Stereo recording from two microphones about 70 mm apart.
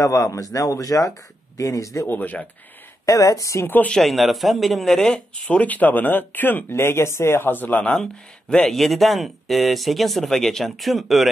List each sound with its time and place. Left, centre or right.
0.0 s a man's voice: left
2.0 s speech: left
3.1 s a man's voice: left
3.6 s speech: left
3.9 s speech: centre
5.3 s speech: left
6.7 s speech: left; by 11.2 s centre